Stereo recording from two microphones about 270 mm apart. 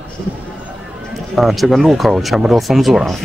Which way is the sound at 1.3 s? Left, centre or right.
Centre.